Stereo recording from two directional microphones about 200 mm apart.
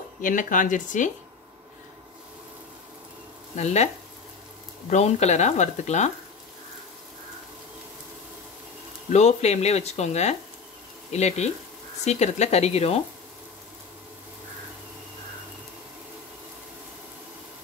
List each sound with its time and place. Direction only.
0.2 s speech: 40° left (ahead or behind)
3.5 s speech: 35° left (ahead or behind)
9.1 s speech: 35° left (ahead or behind)